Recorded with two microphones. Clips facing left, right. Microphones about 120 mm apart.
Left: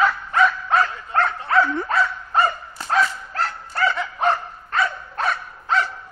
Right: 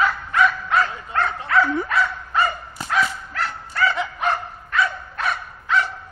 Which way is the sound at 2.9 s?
35° left (ahead or behind).